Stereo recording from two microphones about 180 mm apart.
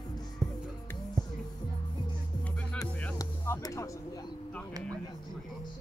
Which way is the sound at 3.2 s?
20° left (ahead or behind).